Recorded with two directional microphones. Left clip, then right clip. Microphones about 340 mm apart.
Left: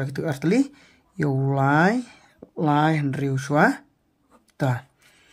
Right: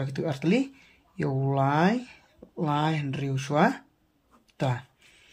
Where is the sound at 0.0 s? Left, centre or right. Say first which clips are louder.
Left 3 dB; centre.